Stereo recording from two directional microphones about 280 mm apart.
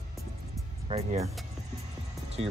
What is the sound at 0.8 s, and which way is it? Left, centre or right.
Speech, right.